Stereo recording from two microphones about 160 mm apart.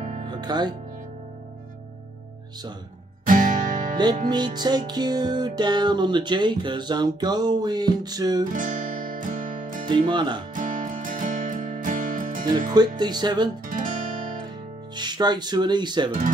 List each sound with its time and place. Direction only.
0.3 s speech: 25° right (ahead or behind)
3.3 s music: 55° right (ahead or behind)
3.9 s music: 25° right (ahead or behind)
8.5 s music: 55° right (ahead or behind)
9.8 s music: 30° right (ahead or behind)
10.5 s music: 55° right (ahead or behind)
12.7 s music: 25° right (ahead or behind)
13.7 s guitar: 55° right (ahead or behind)
15.0 s music: 25° right (ahead or behind)